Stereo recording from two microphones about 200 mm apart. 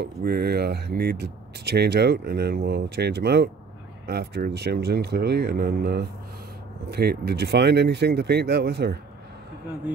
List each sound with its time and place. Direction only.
0.0 s speech: 55° right (ahead or behind)